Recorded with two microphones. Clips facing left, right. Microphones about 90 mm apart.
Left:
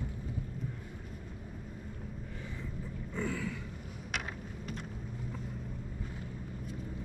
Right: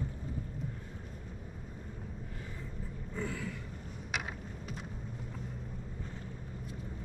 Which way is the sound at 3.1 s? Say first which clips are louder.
Left 3 dB; 80° left.